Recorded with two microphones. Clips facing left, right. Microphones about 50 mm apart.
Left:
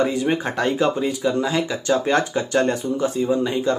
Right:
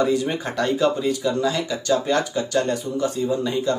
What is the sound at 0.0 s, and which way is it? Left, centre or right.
Speech, left.